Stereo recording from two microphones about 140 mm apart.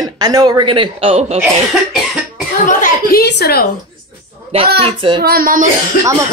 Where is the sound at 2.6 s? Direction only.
80° left.